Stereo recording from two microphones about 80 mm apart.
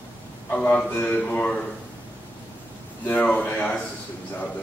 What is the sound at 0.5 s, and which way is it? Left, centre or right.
A man's voice, centre.